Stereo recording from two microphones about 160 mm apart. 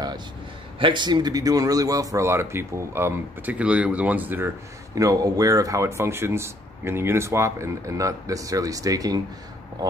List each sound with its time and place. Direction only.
0.7 s speech: 30° right (ahead or behind); by 4.5 s 10° right (ahead or behind)
4.9 s speech: 20° right (ahead or behind)